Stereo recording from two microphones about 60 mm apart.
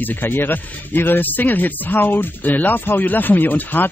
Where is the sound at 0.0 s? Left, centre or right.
Left.